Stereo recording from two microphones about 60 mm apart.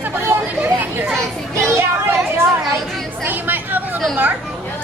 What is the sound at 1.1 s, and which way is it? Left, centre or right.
Children playing, centre.